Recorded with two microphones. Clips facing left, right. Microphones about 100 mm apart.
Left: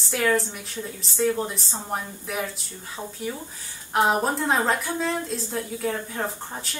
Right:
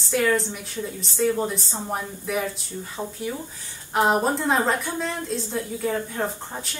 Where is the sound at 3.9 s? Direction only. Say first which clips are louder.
Right 1 dB; centre (ahead or behind).